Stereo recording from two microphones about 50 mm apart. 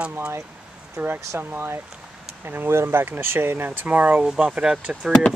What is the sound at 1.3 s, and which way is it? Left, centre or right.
Speech, right.